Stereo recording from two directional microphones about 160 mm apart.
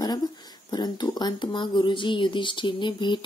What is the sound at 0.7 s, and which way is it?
Speech, 25° left (ahead or behind).